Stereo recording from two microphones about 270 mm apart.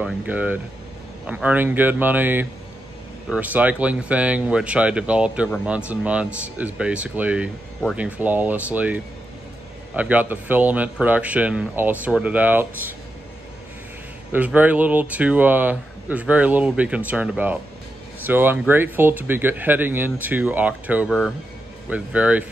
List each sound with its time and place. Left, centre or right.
0.0 s speech: centre
14.3 s speech: centre